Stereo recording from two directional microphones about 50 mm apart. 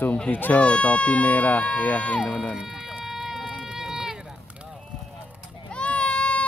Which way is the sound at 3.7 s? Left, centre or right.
Centre.